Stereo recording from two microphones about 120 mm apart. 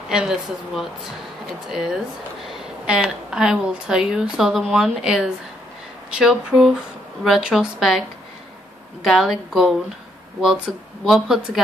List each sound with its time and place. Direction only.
0.1 s speech: 5° right (ahead or behind)
9.0 s speech: centre (ahead or behind)
11.1 s speech: 5° right (ahead or behind)